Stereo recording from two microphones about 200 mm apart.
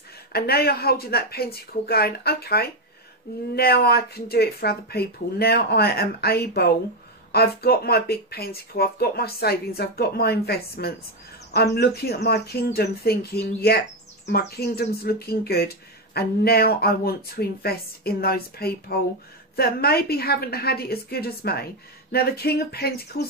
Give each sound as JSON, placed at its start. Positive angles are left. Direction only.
{"t": 0.3, "sound": "speech", "side_deg": 50}